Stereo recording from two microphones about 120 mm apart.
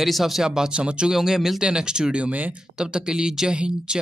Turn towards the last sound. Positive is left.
turn(degrees=-5)  # may be behind; listen again after turning